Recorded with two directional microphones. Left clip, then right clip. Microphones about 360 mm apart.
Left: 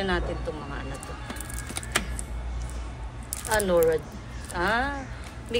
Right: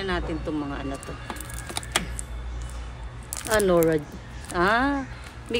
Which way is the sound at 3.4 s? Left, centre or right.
Centre.